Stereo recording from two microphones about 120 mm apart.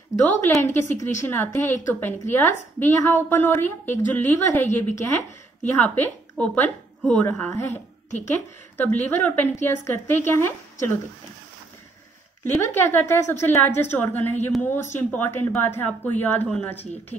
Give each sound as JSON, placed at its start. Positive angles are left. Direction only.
{"t": 0.4, "sound": "a woman's voice", "side_deg": 20}
{"t": 8.8, "sound": "a woman's voice", "side_deg": 15}
{"t": 12.5, "sound": "a woman's voice", "side_deg": 20}